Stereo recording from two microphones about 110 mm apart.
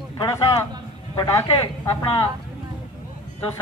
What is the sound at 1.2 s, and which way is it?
Speech, 35° left (ahead or behind).